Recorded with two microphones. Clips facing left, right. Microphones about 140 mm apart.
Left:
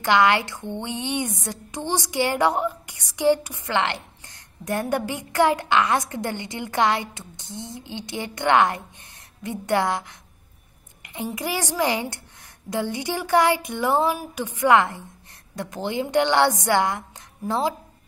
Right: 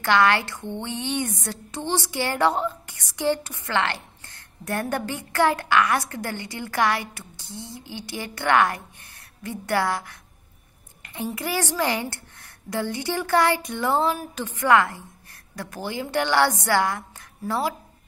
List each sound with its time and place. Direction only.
0.0 s a woman's voice: 15° left (ahead or behind)